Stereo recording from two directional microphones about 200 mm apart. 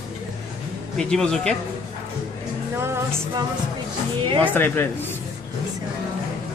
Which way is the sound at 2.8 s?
15° right (ahead or behind).